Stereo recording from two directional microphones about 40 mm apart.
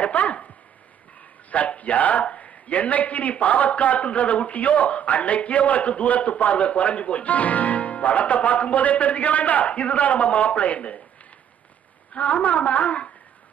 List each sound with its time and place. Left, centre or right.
0.0 s a man's voice: left
1.5 s a man's voice: left
12.1 s a man's voice: left